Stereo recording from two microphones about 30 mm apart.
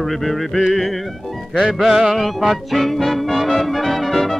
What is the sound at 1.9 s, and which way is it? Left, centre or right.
Music, centre.